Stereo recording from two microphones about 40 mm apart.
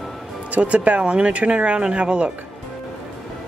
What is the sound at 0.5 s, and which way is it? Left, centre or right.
Speech, right.